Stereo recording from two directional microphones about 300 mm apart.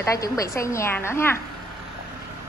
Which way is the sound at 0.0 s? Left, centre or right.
Centre.